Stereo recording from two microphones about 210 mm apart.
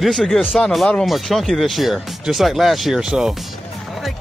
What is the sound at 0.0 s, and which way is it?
Speech, centre (ahead or behind).